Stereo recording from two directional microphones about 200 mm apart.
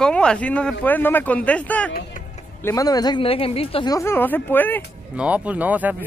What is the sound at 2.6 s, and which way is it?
Speech, 15° left (ahead or behind).